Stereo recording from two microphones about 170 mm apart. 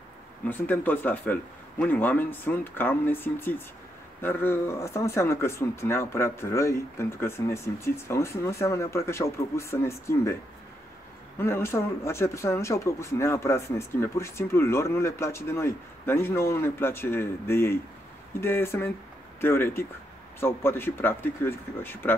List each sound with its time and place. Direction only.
0.5 s speech: 10° left (ahead or behind)
11.3 s speech: 15° left (ahead or behind)